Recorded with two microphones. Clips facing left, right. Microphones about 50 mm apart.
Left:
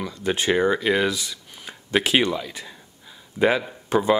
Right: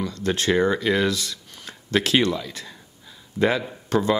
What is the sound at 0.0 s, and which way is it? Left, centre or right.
Speech, centre.